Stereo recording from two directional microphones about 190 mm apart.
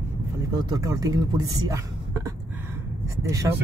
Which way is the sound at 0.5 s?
20° right (ahead or behind).